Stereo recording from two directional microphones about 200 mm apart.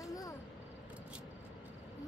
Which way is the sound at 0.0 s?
15° left (ahead or behind).